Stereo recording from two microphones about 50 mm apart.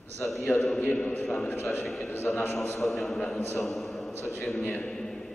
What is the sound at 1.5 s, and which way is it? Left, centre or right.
Speech, left.